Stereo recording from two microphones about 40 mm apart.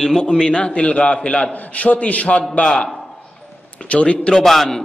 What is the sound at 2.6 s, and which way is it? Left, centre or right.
A man's voice, centre.